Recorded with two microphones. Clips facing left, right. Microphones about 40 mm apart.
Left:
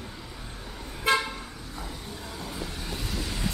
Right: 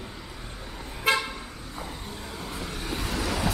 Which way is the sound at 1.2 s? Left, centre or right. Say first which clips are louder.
Even; centre.